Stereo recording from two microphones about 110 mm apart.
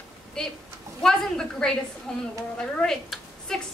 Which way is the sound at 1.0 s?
5° left (ahead or behind).